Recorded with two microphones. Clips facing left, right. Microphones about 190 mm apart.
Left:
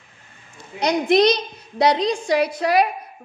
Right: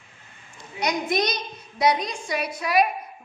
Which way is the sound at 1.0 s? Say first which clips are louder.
Left 9 dB; 65° left (ahead or behind).